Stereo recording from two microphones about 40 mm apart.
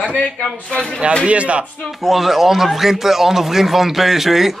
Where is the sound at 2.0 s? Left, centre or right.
Centre.